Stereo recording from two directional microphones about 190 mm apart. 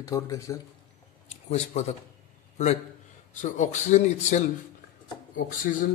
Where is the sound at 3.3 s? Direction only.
40° left (ahead or behind).